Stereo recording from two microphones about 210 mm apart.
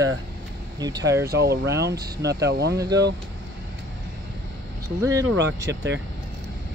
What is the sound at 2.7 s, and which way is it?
Speech, 15° right (ahead or behind).